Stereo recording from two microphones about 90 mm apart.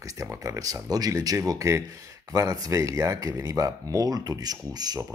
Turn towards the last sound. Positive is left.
turn(degrees=-45)  # may be behind; listen again after turning